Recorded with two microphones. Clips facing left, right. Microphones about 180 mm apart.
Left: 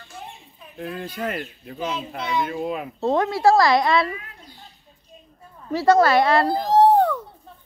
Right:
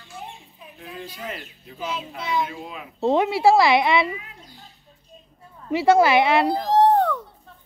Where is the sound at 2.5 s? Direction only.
55° left (ahead or behind).